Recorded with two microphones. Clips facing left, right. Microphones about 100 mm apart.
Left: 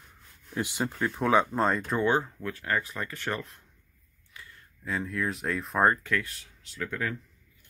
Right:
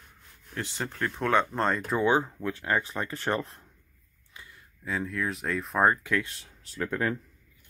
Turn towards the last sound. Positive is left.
turn(degrees=-35)  # may be behind; listen again after turning